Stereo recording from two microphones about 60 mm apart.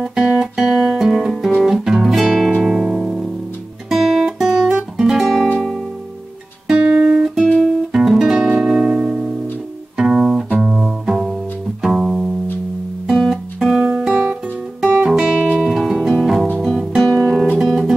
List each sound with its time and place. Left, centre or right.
0.0 s guitar: centre
2.5 s music: centre
3.9 s guitar: centre
5.6 s music: centre
6.7 s guitar: centre
8.2 s music: centre
13.8 s guitar: centre
15.0 s music: centre
17.0 s guitar: centre
17.6 s music: centre